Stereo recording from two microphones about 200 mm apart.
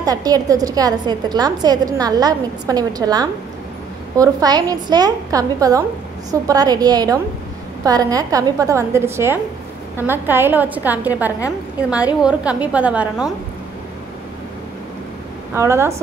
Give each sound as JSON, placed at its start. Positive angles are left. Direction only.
{"t": 0.0, "sound": "a woman's voice", "side_deg": -20}
{"t": 15.5, "sound": "a woman's voice", "side_deg": -15}